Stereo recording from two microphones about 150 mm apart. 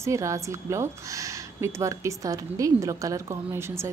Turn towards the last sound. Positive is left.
turn(degrees=-15)  # may be behind; listen again after turning